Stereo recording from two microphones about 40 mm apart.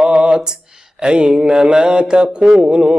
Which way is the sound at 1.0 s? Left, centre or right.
Right.